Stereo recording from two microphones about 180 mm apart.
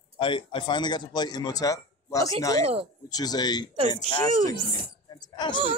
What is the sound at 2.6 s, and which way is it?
Speech, 30° right (ahead or behind).